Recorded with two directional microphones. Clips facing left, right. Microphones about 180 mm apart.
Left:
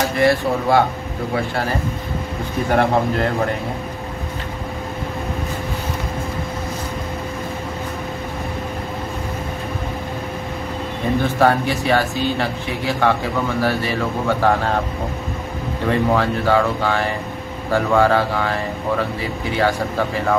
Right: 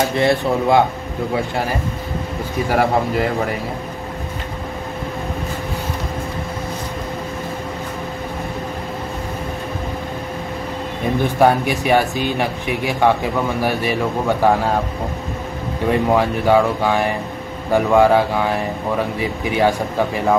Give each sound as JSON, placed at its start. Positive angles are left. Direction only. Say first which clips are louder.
{"t": 0.2, "sound": "speech", "louder": "left 2 dB", "side_deg": -20}
{"t": 2.7, "sound": "a man's voice", "louder": "even", "side_deg": -5}
{"t": 11.3, "sound": "speech", "louder": "right 3 dB", "side_deg": -15}
{"t": 15.9, "sound": "speech", "louder": "right 1 dB", "side_deg": -15}